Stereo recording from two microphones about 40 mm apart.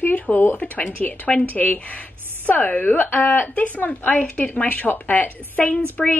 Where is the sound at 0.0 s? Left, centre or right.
Left.